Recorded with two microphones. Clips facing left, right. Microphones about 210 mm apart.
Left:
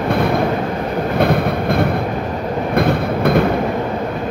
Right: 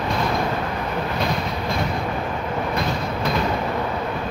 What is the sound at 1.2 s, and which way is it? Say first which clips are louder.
Vehicle: left 9 dB; 60° left (ahead or behind).